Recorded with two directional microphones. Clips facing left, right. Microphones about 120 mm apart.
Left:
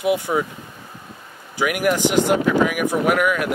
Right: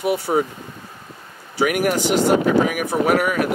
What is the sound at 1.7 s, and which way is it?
Speech, 45° right (ahead or behind).